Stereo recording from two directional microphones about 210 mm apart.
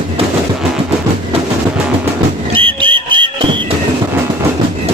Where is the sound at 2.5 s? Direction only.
25° right (ahead or behind).